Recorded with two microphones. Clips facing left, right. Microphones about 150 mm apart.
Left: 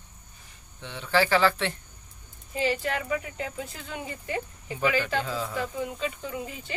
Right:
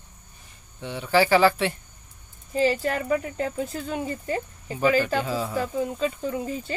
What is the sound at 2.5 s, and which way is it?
Speech, 40° right (ahead or behind).